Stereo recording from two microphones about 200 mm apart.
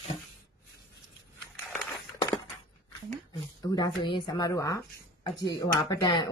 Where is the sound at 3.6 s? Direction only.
20° left (ahead or behind).